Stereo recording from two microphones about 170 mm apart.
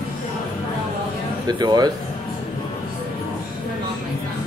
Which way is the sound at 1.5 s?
25° right (ahead or behind).